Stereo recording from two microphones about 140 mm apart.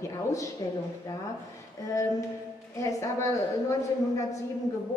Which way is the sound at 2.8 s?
20° left (ahead or behind).